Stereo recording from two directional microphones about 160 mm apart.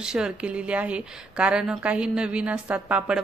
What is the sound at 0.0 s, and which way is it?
A woman's voice, 5° right (ahead or behind).